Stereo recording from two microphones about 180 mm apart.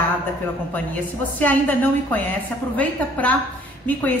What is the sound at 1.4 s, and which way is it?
A woman's voice, 10° left (ahead or behind).